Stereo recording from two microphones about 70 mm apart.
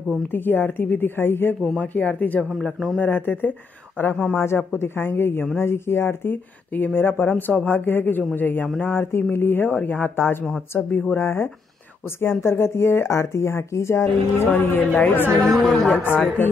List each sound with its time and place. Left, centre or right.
0.3 s speech: left
1.8 s speech: left
2.6 s speech: centre
3.0 s speech: left
4.4 s speech: left
9.7 s speech: left
14.5 s speech: left
15.4 s speech: centre
15.9 s speech: left